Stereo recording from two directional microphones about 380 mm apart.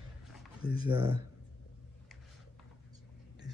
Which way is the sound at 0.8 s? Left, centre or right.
Centre.